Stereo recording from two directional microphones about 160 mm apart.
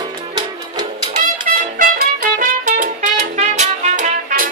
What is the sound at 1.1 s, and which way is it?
Music, 60° right (ahead or behind).